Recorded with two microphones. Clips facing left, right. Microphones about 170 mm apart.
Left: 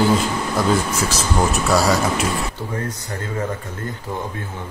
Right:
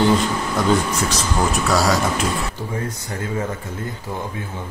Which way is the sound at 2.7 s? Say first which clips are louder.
Even; 10° right (ahead or behind).